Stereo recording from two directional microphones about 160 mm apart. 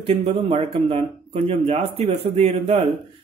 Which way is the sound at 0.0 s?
40° right (ahead or behind).